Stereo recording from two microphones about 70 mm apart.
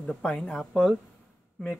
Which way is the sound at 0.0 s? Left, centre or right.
Centre.